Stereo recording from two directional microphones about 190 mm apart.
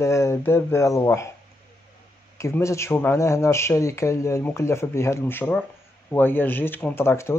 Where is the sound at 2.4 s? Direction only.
15° left (ahead or behind).